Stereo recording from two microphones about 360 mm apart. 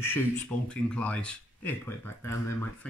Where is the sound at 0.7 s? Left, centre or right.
Centre.